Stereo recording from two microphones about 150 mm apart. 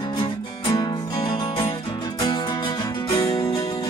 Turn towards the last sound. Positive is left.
turn(degrees=25)  # may be behind; listen again after turning